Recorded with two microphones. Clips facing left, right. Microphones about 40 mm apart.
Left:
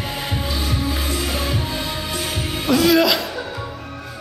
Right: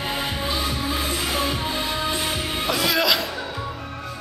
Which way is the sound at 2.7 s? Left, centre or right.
Centre.